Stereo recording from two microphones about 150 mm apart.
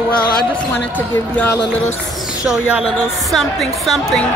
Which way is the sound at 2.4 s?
5° right (ahead or behind).